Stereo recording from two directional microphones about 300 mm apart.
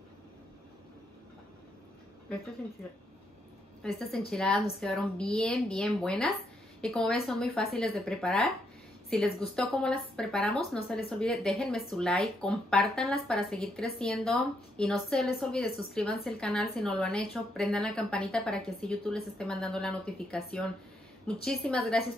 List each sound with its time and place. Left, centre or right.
4.3 s speech: centre